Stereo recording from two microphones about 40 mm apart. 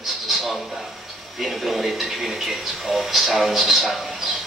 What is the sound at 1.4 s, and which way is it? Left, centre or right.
Speech, centre.